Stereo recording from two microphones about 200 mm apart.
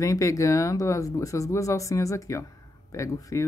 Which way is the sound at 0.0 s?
15° left (ahead or behind).